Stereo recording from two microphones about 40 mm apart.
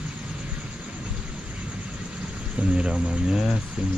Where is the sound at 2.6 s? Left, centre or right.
Right.